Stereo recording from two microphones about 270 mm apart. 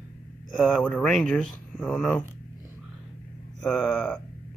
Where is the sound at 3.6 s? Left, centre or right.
Centre.